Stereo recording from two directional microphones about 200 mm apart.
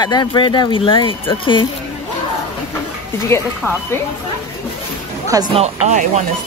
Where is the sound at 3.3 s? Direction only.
15° left (ahead or behind).